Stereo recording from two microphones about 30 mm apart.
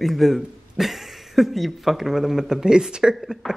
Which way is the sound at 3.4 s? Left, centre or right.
Centre.